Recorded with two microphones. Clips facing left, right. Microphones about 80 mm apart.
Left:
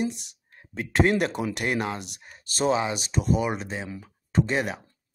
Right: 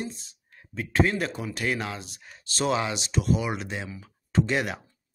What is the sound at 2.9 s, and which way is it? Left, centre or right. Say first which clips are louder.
Speech: left 1 dB; left.